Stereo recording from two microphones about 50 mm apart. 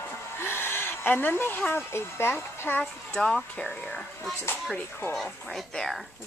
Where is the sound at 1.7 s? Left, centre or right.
Left.